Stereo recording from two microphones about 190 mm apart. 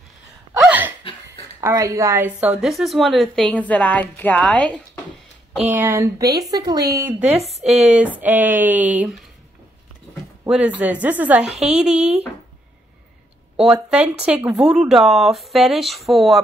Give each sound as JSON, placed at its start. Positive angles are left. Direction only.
{"t": 0.6, "sound": "laughter", "side_deg": -10}
{"t": 1.6, "sound": "a woman's voice", "side_deg": -15}
{"t": 5.7, "sound": "speech", "side_deg": -10}
{"t": 7.2, "sound": "speech", "side_deg": -35}
{"t": 8.2, "sound": "speech", "side_deg": -10}
{"t": 10.5, "sound": "a woman's voice", "side_deg": -5}
{"t": 13.6, "sound": "a woman's voice", "side_deg": -5}